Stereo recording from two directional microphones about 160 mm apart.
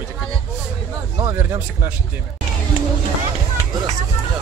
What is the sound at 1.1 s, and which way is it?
Speech, 20° right (ahead or behind).